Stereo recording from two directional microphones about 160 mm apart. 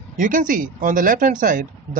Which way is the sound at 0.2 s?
55° right (ahead or behind).